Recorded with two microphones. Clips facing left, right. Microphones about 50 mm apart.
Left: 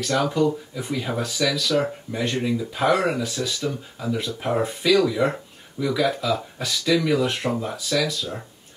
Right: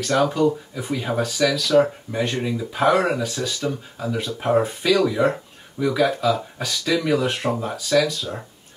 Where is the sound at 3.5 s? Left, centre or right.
Right.